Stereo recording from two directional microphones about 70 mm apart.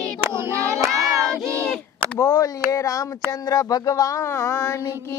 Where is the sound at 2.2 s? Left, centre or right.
Left.